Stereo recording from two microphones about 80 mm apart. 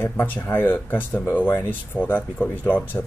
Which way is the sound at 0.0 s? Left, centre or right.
Left.